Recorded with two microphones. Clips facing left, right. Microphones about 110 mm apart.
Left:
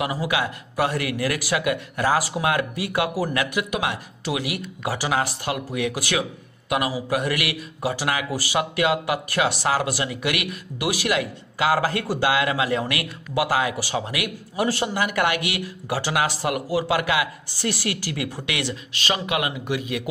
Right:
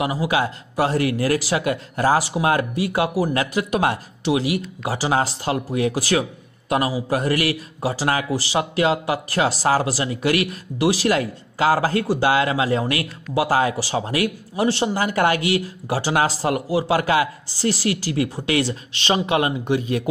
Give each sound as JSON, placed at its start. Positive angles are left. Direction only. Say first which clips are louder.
{"t": 0.0, "sound": "speech", "louder": "right 3 dB", "side_deg": -25}
{"t": 4.2, "sound": "speech", "louder": "right 7 dB", "side_deg": -25}